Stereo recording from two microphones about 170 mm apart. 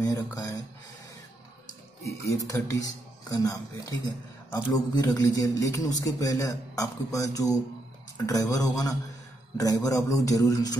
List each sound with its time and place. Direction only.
0.0 s speech: 20° left (ahead or behind)
2.4 s speech: 20° left (ahead or behind)